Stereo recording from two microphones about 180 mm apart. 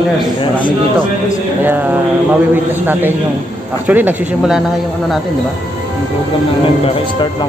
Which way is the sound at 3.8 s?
10° right (ahead or behind).